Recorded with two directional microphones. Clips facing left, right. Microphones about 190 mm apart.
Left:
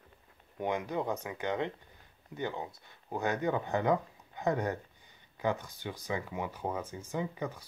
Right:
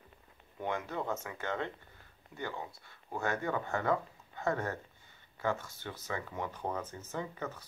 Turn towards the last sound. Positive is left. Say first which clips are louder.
# left 3 dB
turn(degrees=15)  # may be behind; listen again after turning